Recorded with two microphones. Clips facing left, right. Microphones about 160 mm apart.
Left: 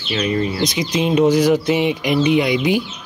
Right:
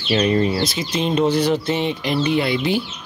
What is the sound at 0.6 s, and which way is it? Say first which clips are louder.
Speech: left 3 dB; 15° left (ahead or behind).